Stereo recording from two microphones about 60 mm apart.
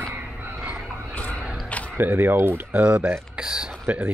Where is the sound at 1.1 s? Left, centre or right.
Left.